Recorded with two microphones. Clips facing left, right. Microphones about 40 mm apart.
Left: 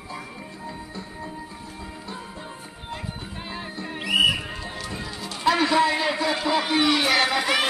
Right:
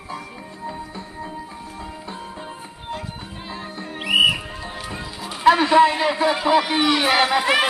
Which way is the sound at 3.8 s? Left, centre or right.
Centre.